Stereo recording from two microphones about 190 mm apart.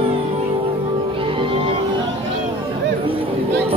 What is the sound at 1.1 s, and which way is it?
Music, 30° right (ahead or behind).